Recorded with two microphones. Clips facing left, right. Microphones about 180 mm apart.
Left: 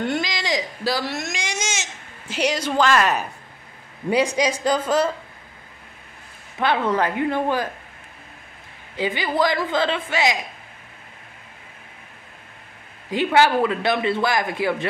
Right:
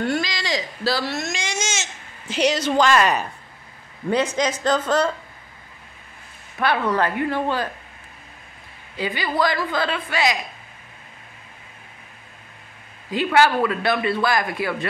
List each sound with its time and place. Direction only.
0.0 s baby cry: 20° left (ahead or behind); by 3.3 s centre (ahead or behind)
4.4 s speech: 10° left (ahead or behind)
6.6 s speech: 20° left (ahead or behind)
8.9 s a man's voice: 20° left (ahead or behind)
13.1 s a man's voice: 20° left (ahead or behind)